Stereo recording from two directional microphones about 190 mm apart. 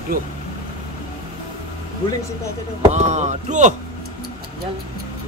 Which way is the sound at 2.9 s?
40° right (ahead or behind).